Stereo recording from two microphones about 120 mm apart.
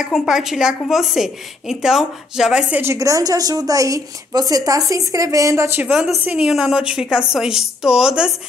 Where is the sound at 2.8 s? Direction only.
25° right (ahead or behind).